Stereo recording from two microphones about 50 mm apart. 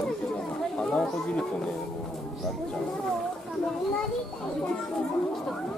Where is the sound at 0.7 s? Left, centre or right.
Centre.